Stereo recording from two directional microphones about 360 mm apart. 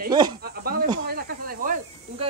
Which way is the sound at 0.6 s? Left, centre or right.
Right.